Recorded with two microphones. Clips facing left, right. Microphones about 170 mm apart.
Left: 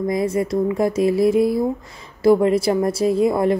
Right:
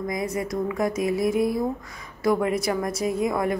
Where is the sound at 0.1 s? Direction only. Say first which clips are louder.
Left 7 dB; 30° left (ahead or behind).